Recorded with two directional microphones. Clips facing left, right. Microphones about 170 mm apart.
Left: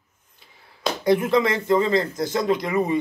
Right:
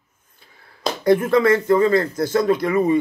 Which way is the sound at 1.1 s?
20° left (ahead or behind).